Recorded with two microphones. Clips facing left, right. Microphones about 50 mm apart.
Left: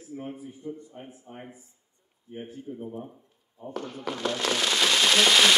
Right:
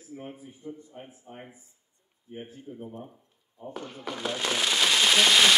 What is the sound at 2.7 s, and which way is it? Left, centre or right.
Speech, centre.